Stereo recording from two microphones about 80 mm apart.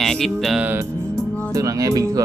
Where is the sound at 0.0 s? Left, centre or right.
Centre.